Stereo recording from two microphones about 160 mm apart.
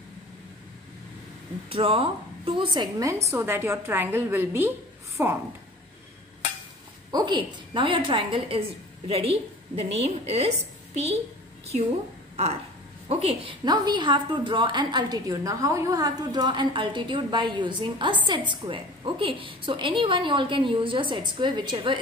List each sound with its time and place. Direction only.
1.7 s a woman's voice: 35° right (ahead or behind); by 5.4 s 15° right (ahead or behind)
7.1 s a woman's voice: 25° right (ahead or behind)
13.1 s a woman's voice: 40° right (ahead or behind)
13.7 s a woman's voice: 25° right (ahead or behind)